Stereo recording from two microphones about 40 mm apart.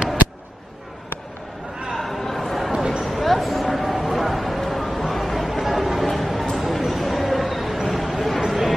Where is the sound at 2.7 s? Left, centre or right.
Centre.